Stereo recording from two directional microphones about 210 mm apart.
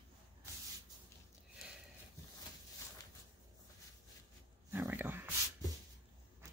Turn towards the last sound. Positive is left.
turn(degrees=-10)  # may be behind; listen again after turning